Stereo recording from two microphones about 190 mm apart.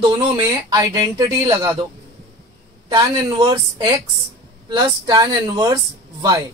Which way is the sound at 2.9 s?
20° right (ahead or behind).